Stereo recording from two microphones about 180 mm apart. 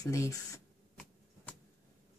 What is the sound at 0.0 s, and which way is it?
Speech, 15° left (ahead or behind).